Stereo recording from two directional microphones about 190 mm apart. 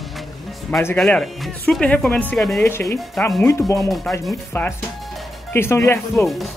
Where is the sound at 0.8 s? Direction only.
5° left (ahead or behind).